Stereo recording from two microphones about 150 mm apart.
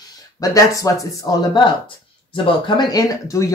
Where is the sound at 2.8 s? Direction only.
25° left (ahead or behind).